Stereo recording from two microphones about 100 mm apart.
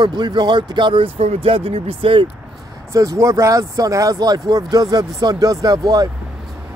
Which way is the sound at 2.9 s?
35° right (ahead or behind).